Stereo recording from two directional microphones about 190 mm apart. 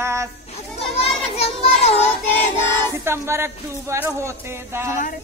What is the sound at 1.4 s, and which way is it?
Speech, 35° left (ahead or behind).